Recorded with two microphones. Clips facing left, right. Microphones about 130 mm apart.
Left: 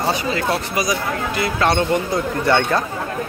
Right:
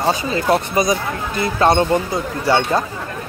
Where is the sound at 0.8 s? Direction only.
25° right (ahead or behind).